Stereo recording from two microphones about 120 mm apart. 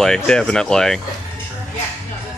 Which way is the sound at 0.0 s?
5° left (ahead or behind).